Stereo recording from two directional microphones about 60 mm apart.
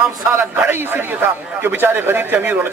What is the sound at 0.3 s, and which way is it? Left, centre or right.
A man's voice, right.